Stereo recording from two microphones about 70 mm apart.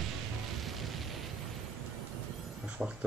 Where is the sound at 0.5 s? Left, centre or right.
Centre.